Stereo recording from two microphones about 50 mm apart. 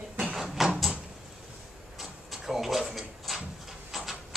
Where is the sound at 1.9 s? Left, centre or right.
Centre.